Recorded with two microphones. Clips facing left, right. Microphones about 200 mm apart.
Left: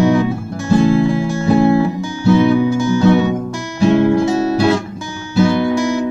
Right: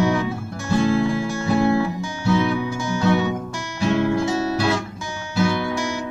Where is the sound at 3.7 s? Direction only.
30° left (ahead or behind).